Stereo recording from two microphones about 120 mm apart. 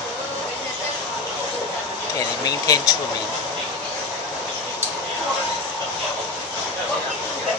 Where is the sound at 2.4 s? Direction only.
30° left (ahead or behind).